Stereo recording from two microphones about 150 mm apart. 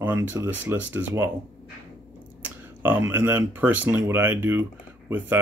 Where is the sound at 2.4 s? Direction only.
10° right (ahead or behind).